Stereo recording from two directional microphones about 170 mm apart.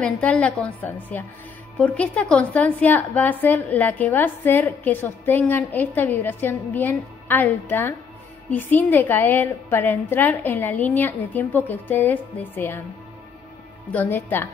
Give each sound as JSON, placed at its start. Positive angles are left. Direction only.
{"t": 0.0, "sound": "a woman's voice", "side_deg": 5}
{"t": 13.9, "sound": "a woman's voice", "side_deg": 10}